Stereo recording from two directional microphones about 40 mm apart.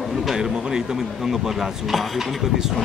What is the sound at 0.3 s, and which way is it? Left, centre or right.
Speech, centre.